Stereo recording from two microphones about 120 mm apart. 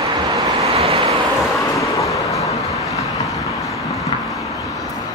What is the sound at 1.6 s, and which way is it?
Vehicle, 25° left (ahead or behind).